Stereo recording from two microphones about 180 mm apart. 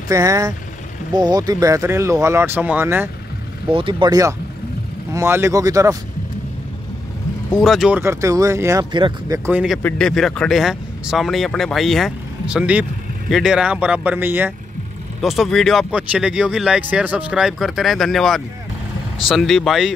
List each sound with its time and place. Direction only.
0.1 s speech: 20° right (ahead or behind)
3.6 s speech: 30° right (ahead or behind)
7.5 s speech: centre (ahead or behind)
8.0 s speech: 15° right (ahead or behind)
8.9 s speech: 25° right (ahead or behind)
9.5 s speech: 5° right (ahead or behind)
9.8 s speech: 5° left (ahead or behind)